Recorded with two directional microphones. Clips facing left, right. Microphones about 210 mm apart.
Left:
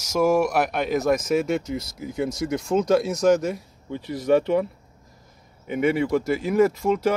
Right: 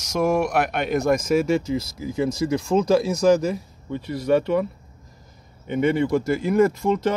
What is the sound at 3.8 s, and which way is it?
Speech, 15° left (ahead or behind).